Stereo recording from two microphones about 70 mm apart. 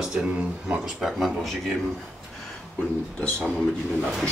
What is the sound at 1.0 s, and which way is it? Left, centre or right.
Speech, centre.